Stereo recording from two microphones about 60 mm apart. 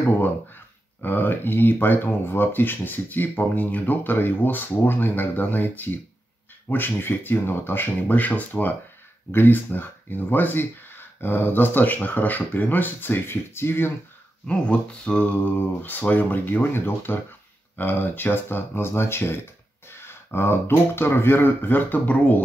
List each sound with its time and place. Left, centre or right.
1.0 s speech: left
14.5 s speech: centre
15.8 s speech: left